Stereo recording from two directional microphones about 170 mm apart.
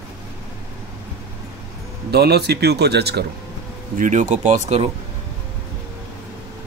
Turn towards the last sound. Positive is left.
turn(degrees=-45)  # may be behind; listen again after turning